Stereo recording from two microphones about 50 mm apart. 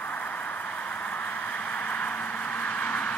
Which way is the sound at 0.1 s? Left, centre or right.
Left.